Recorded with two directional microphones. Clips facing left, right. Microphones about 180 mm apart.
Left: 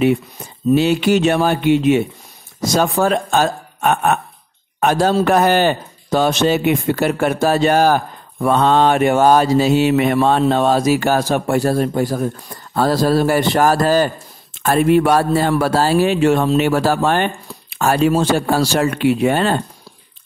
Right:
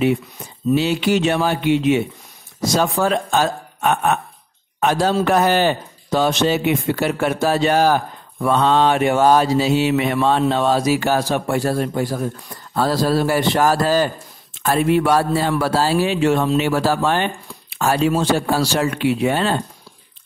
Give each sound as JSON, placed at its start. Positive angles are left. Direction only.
{"t": 0.7, "sound": "a man's voice", "side_deg": 50}